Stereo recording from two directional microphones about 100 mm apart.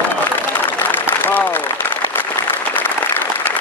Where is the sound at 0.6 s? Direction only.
20° left (ahead or behind).